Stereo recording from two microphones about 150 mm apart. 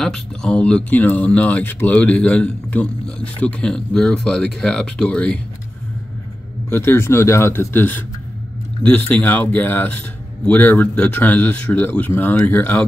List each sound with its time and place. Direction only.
0.0 s speech: 5° left (ahead or behind)
6.7 s speech: 15° left (ahead or behind)
9.1 s speech: 10° left (ahead or behind)